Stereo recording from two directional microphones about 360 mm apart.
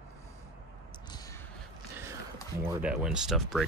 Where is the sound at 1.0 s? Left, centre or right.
Centre.